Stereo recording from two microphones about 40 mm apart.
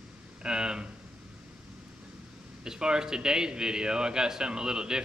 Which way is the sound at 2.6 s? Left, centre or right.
Centre.